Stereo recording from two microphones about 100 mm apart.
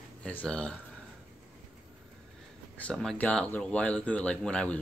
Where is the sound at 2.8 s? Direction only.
10° left (ahead or behind).